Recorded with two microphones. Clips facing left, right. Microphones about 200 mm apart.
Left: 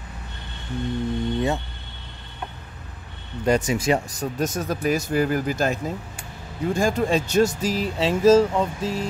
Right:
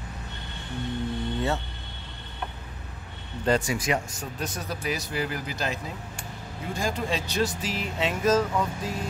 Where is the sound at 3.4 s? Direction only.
15° left (ahead or behind).